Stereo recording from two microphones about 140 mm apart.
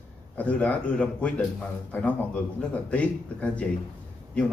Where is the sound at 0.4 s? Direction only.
10° left (ahead or behind).